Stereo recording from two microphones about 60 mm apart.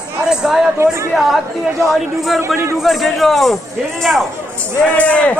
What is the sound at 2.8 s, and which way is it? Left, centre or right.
Speech, centre.